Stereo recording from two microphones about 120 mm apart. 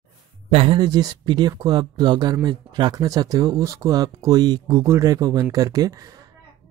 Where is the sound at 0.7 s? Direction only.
35° right (ahead or behind).